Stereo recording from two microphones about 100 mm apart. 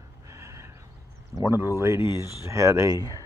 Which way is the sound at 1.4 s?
25° right (ahead or behind).